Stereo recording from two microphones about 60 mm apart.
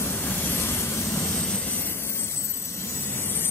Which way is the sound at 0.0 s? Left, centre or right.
Left.